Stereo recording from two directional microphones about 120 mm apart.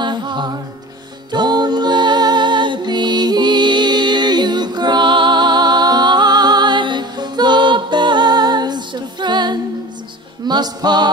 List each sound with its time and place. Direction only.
0.0 s music: 40° right (ahead or behind)